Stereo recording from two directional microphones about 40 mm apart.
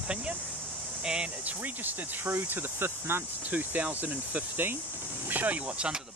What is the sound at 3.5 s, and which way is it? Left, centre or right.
Speech, right.